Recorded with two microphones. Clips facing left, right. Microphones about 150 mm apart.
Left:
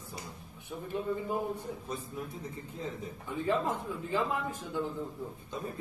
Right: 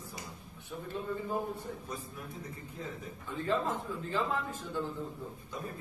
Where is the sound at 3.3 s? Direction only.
15° left (ahead or behind).